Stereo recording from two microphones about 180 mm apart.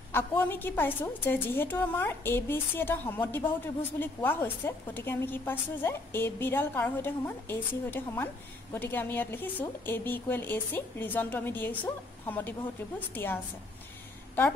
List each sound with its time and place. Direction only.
0.1 s a woman's voice: 10° left (ahead or behind)